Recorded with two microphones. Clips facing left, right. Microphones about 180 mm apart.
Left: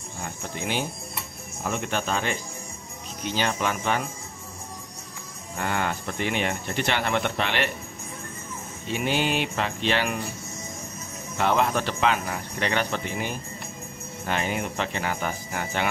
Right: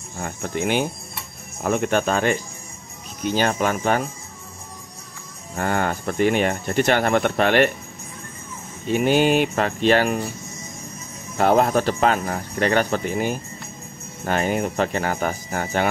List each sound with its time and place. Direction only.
0.2 s speech: 55° right (ahead or behind)
5.6 s speech: 45° right (ahead or behind)
8.8 s speech: 50° right (ahead or behind)
11.3 s speech: 45° right (ahead or behind)